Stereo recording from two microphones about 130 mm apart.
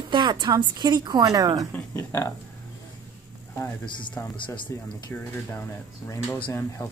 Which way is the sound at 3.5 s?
15° left (ahead or behind).